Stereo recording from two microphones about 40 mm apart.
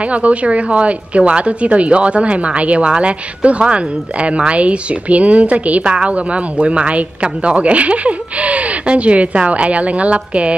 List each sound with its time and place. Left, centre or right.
0.1 s speech: right